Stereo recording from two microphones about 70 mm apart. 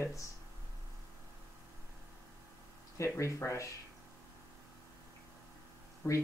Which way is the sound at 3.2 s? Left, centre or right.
Left.